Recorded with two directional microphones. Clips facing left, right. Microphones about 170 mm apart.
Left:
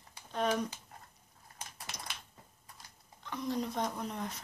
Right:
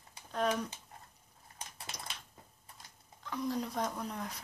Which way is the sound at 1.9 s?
10° right (ahead or behind).